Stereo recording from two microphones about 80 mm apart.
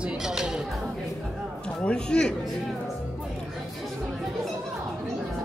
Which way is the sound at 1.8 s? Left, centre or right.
Centre.